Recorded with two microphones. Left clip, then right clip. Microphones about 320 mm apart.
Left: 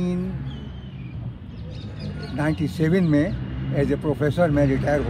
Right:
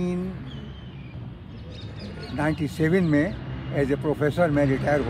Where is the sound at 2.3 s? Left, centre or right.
Centre.